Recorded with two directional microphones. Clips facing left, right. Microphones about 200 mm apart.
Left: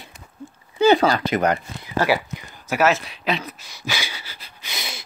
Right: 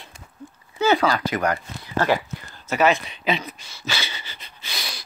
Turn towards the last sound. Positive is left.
turn(degrees=10)  # may be behind; listen again after turning